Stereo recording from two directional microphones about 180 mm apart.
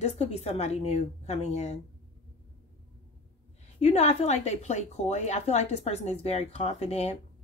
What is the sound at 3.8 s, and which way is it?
A woman's voice, 35° left (ahead or behind).